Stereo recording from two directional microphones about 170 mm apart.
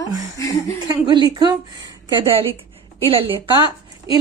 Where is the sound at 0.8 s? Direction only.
25° right (ahead or behind).